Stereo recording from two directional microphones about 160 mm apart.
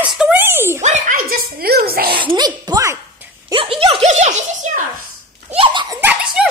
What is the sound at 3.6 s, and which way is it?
Giggle, 35° right (ahead or behind).